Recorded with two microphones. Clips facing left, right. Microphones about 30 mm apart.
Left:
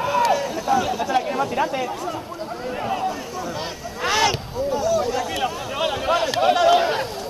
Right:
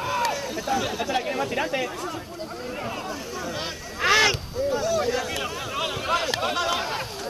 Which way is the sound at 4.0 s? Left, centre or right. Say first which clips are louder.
Even; centre.